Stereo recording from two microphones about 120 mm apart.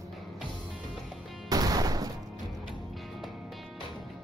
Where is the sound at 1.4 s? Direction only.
30° right (ahead or behind).